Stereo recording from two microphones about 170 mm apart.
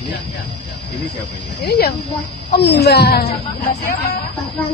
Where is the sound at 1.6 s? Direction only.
70° left (ahead or behind).